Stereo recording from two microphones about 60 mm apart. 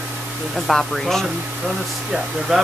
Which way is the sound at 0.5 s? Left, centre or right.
Centre.